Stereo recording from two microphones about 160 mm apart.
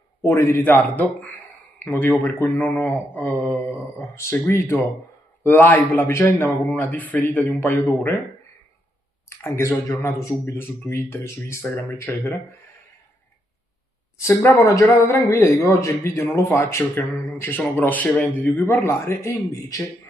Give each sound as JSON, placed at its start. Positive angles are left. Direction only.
{"t": 0.2, "sound": "speech", "side_deg": 15}
{"t": 9.4, "sound": "speech", "side_deg": 15}
{"t": 14.1, "sound": "speech", "side_deg": 20}